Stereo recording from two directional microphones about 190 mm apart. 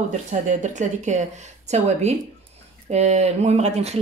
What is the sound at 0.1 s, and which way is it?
Speech, 40° right (ahead or behind).